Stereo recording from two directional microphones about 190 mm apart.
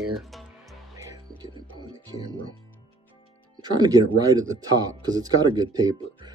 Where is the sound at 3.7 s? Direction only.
20° right (ahead or behind).